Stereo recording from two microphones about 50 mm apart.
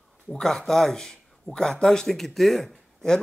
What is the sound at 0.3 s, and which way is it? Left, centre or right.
Speech, centre.